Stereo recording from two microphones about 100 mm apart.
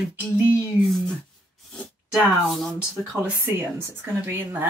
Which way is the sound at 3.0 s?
20° right (ahead or behind).